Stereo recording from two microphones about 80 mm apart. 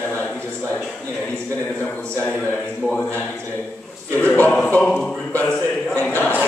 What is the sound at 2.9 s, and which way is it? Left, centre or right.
Speech, left.